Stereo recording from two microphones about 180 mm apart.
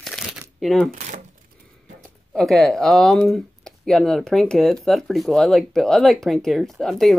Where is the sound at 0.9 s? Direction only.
45° right (ahead or behind).